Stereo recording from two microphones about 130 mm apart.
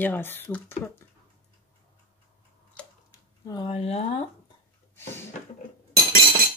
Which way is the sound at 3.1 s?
30° left (ahead or behind).